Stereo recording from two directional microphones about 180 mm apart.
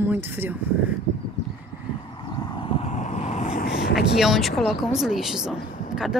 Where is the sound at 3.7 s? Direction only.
65° left (ahead or behind).